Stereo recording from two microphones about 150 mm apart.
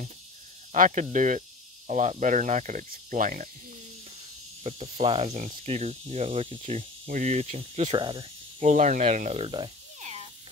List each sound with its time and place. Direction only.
0.7 s speech: 55° right (ahead or behind)
4.6 s speech: 45° right (ahead or behind)
5.7 s cricket: 45° right (ahead or behind)
6.8 s speech: 65° right (ahead or behind); by 8.0 s 45° right (ahead or behind)
8.0 s cricket: 35° right (ahead or behind)
8.5 s speech: 55° right (ahead or behind)